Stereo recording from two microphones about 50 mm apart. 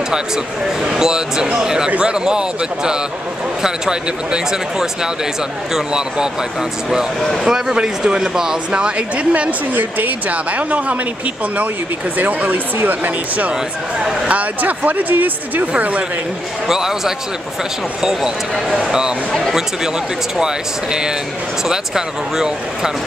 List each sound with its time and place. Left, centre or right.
0.8 s speech: centre
7.4 s speech: centre
9.8 s speech: right
12.2 s speech: right
13.9 s speech: centre
14.3 s speech: right
16.6 s speech: centre
18.9 s speech: centre
20.3 s speech: centre